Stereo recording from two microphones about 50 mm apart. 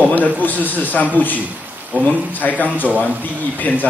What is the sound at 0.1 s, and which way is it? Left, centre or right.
A man's voice, left.